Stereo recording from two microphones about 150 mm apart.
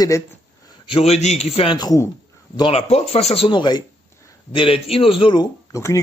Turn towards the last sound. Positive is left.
turn(degrees=20)  # may be behind; listen again after turning